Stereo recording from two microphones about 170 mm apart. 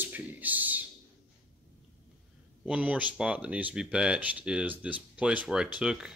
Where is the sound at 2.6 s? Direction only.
5° right (ahead or behind).